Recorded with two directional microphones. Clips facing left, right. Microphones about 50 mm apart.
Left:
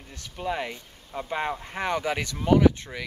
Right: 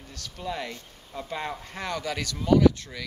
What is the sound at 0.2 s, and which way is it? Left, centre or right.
Speech, left.